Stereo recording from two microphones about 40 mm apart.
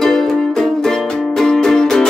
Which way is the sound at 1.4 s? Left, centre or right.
Centre.